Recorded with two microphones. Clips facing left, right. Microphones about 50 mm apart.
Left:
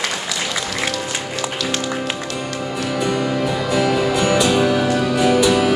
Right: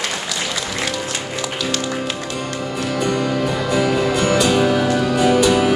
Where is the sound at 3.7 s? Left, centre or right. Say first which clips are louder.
Even; centre.